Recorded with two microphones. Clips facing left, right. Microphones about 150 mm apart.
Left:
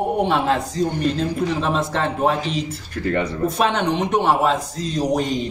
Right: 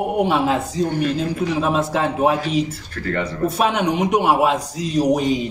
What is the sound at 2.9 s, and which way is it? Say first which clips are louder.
Speech: left 3 dB; 20° left (ahead or behind).